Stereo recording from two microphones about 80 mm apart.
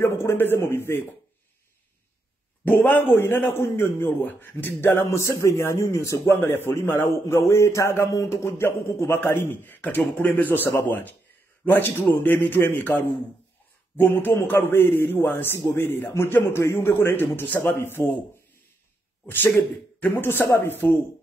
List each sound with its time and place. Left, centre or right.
0.0 s a man's voice: left
2.6 s a man's voice: centre
19.2 s a man's voice: left